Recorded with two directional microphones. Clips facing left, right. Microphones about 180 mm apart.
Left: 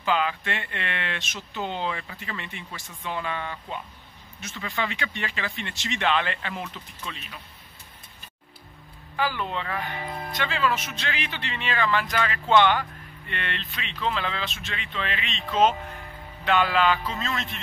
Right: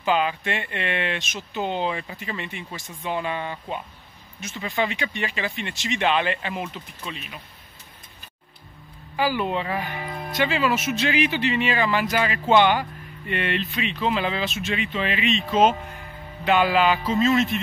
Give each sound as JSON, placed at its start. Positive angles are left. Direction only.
{"t": 0.0, "sound": "speech", "side_deg": -20}
{"t": 9.1, "sound": "speech", "side_deg": -10}